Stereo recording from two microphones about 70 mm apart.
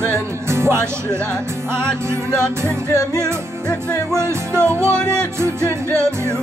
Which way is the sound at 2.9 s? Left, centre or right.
Left.